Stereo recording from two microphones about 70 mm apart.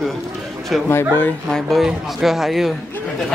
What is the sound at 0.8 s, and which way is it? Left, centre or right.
Speech, left.